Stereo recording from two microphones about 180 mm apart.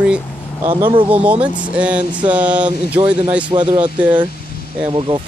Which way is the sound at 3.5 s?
30° right (ahead or behind).